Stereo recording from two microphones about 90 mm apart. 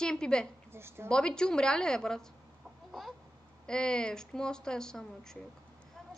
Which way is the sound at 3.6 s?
10° left (ahead or behind).